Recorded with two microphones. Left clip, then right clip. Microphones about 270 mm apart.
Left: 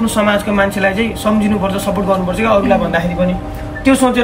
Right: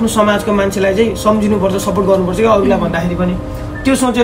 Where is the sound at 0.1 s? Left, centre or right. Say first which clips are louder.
Right 1 dB; centre.